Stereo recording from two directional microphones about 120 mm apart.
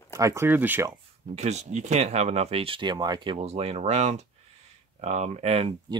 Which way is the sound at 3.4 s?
60° right (ahead or behind).